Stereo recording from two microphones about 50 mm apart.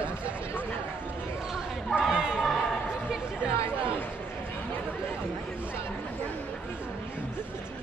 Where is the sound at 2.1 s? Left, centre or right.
Centre.